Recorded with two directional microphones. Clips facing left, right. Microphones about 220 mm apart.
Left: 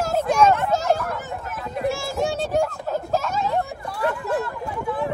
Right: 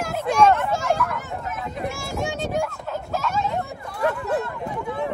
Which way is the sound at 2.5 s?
35° left (ahead or behind).